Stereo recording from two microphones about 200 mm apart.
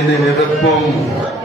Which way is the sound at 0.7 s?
Centre (ahead or behind).